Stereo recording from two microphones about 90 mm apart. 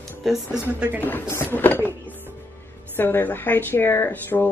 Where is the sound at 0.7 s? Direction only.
20° right (ahead or behind).